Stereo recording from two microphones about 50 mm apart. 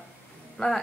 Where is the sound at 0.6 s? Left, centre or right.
Centre.